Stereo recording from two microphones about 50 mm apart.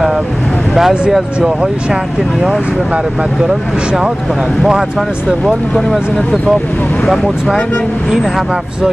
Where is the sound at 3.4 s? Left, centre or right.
Centre.